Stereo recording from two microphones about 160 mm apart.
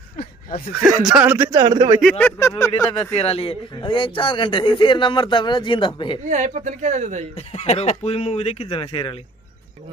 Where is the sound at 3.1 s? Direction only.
40° left (ahead or behind).